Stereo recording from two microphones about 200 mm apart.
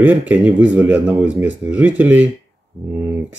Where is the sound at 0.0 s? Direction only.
10° right (ahead or behind).